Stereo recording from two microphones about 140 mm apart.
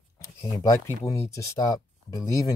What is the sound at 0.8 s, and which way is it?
Speech, 20° left (ahead or behind).